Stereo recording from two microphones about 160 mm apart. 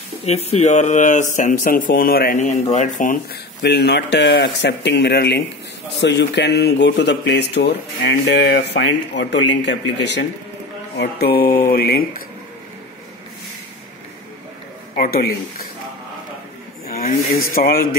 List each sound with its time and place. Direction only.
0.2 s speech: 40° left (ahead or behind); by 2.3 s 65° left (ahead or behind)
2.3 s speech: 45° left (ahead or behind)
3.6 s speech: 90° left; by 12.0 s 75° left (ahead or behind)
15.0 s speech: 75° left (ahead or behind)
16.9 s speech: 65° left (ahead or behind)